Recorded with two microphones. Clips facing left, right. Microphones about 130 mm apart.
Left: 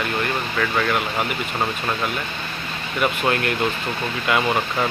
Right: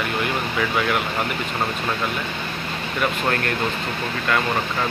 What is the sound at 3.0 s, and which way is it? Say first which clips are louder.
Speech: left 2 dB; 5° left (ahead or behind).